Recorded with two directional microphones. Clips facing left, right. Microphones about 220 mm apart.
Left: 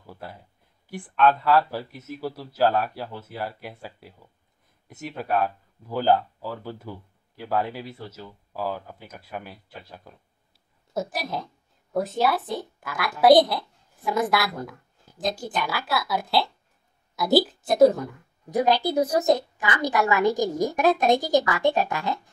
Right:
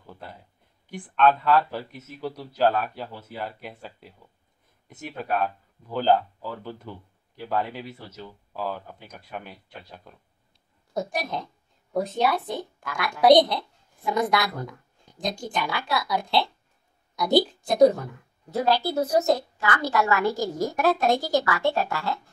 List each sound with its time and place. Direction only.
0.0 s a sound: 10° left (ahead or behind)
0.8 s a woman's voice: 5° left (ahead or behind)
5.2 s a woman's voice: 5° left (ahead or behind)
18.5 s a woman's voice: 15° left (ahead or behind)